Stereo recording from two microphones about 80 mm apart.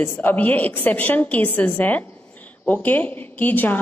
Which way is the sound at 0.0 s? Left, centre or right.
Left.